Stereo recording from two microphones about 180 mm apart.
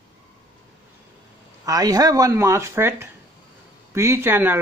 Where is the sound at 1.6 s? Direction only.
20° right (ahead or behind).